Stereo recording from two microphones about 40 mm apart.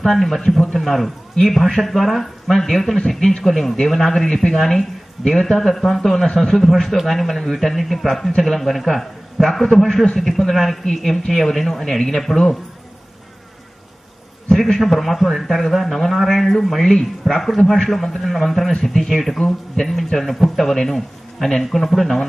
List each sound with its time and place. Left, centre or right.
0.0 s a man's voice: centre
6.2 s speech: left
6.8 s a man's voice: centre
14.5 s a man's voice: centre
18.7 s a man's voice: centre